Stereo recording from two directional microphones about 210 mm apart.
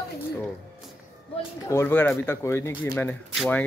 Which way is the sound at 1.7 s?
10° left (ahead or behind).